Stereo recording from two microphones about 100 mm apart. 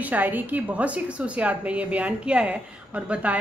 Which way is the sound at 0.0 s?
15° right (ahead or behind).